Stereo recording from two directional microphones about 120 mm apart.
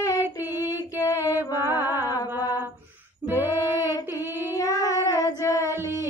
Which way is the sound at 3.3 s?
30° left (ahead or behind).